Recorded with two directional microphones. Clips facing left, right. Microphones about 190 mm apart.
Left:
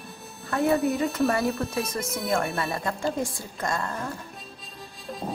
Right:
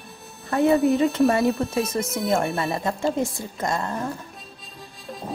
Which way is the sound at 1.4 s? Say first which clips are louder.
Right 5 dB; centre (ahead or behind).